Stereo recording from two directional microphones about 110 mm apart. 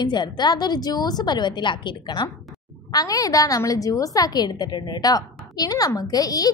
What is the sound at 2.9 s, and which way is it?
A woman's voice, 35° left (ahead or behind).